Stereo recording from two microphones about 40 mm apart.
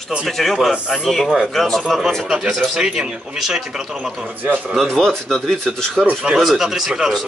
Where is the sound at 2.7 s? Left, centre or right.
Centre.